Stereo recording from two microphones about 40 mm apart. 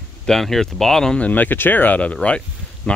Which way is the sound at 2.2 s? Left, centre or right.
Left.